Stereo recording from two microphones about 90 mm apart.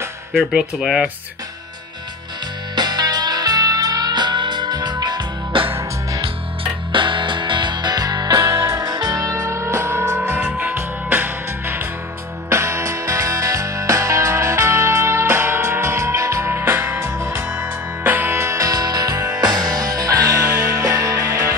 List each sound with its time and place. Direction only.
0.3 s speech: centre (ahead or behind)
2.7 s music: 50° right (ahead or behind)
6.2 s music: 65° right (ahead or behind); by 21.5 s 35° right (ahead or behind)